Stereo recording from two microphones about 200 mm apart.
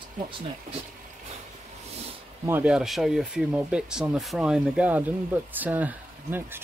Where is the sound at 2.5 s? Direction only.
5° right (ahead or behind).